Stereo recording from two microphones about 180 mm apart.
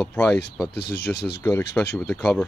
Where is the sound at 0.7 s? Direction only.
60° left (ahead or behind).